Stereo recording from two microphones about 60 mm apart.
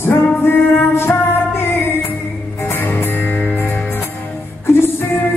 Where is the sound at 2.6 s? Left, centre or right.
Left.